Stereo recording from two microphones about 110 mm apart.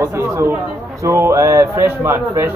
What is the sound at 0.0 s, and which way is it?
A man's voice, 25° right (ahead or behind).